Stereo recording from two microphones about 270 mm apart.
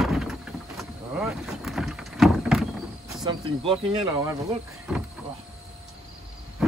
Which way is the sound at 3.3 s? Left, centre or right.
Centre.